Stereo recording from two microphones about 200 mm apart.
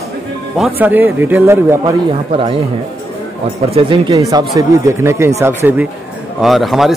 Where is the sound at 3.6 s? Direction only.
25° right (ahead or behind); by 5.9 s 10° right (ahead or behind).